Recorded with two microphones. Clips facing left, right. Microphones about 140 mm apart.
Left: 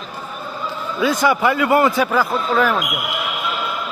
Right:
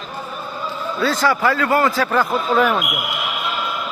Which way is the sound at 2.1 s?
Centre (ahead or behind).